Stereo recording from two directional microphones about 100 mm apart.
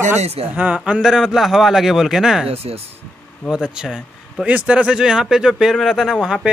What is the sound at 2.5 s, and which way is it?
Speech, 90° right.